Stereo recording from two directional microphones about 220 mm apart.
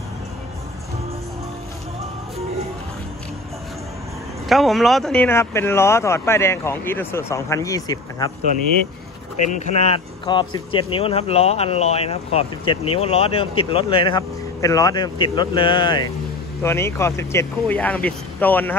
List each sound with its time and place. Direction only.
4.5 s speech: centre (ahead or behind); by 8.3 s 15° left (ahead or behind)
9.5 s speech: 30° left (ahead or behind); by 18.8 s 10° left (ahead or behind)